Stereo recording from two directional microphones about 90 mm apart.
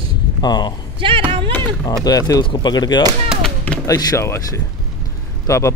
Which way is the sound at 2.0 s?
45° left (ahead or behind).